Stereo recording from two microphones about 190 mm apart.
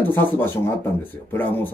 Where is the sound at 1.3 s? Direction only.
10° left (ahead or behind).